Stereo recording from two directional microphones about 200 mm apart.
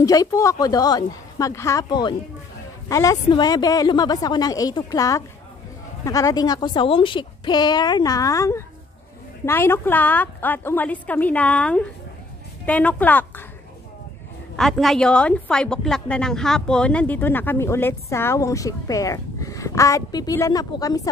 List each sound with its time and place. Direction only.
0.0 s a woman's voice: 15° left (ahead or behind)
14.6 s a woman's voice: centre (ahead or behind); by 21.1 s 20° left (ahead or behind)